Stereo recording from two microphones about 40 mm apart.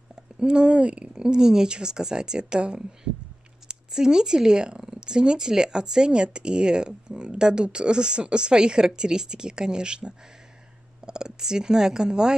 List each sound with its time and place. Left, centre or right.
0.1 s speech: right